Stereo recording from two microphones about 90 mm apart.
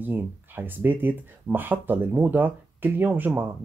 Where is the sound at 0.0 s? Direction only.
20° right (ahead or behind).